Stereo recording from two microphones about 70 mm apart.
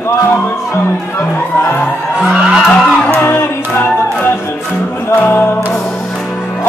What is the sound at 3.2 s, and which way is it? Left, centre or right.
Music, left.